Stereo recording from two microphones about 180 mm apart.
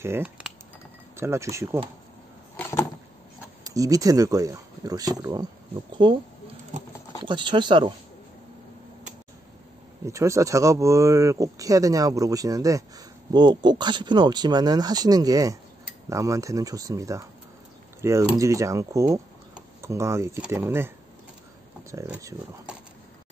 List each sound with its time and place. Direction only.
0.0 s speech: 10° right (ahead or behind)
2.5 s a sound: 15° left (ahead or behind)
3.6 s speech: 20° right (ahead or behind)
7.2 s speech: 25° right (ahead or behind)
10.0 s speech: 15° right (ahead or behind)
21.9 s speech: 15° right (ahead or behind)